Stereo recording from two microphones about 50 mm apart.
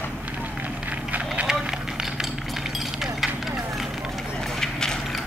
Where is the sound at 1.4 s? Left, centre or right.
Centre.